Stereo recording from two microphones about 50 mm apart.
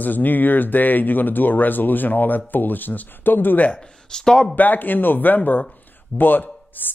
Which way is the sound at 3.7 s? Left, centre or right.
Centre.